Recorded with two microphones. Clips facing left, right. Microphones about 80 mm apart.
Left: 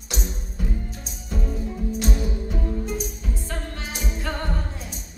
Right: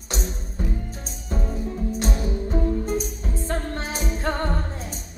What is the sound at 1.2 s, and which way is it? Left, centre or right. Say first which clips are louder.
Music: right 1 dB; right.